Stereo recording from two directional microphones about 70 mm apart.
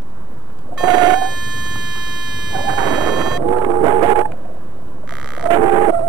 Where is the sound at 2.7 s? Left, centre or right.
Right.